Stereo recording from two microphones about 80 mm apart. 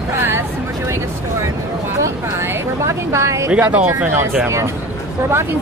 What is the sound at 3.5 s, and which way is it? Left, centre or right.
Speech, centre.